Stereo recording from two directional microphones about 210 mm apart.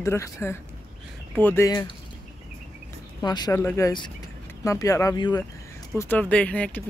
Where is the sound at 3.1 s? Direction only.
20° left (ahead or behind).